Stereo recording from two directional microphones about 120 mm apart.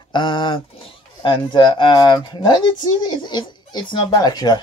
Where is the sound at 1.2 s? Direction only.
40° left (ahead or behind).